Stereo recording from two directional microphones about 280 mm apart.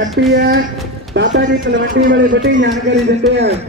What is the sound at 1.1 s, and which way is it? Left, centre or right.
Speech, right.